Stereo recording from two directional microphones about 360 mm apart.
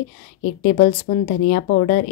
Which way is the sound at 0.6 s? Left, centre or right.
Left.